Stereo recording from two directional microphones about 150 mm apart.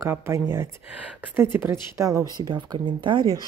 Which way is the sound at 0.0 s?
20° right (ahead or behind).